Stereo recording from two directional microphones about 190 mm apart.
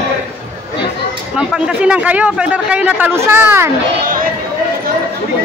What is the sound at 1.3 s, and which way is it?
A man's voice, 5° right (ahead or behind).